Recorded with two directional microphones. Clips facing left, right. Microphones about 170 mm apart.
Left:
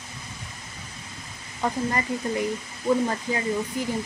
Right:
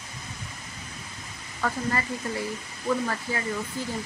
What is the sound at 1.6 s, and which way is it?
Speech, 20° left (ahead or behind).